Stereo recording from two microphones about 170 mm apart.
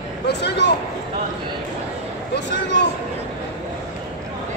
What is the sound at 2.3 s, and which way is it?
Speech, 90° left.